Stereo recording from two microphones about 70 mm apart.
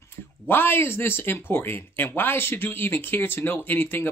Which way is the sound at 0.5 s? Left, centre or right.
Left.